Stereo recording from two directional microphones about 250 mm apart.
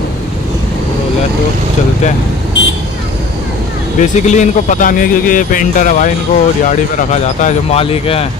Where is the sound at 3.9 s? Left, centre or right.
Left.